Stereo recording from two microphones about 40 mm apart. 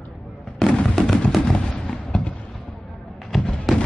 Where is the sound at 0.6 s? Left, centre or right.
Centre.